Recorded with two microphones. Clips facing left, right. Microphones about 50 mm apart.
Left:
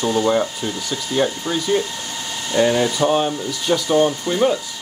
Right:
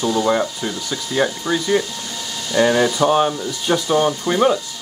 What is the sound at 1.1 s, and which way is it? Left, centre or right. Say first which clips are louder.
Speech: right 1 dB; right.